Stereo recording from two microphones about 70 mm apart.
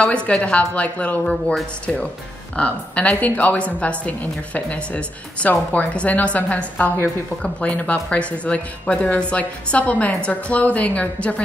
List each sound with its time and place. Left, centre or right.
0.0 s a woman's voice: centre
1.2 s speech: centre
2.5 s a woman's voice: centre